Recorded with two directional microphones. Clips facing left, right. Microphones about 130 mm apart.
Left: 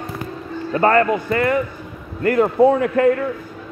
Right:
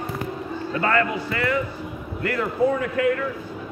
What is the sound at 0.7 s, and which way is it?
A man's voice, 40° left (ahead or behind).